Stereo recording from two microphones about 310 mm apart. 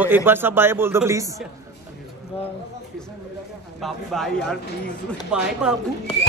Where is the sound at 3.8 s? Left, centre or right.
Centre.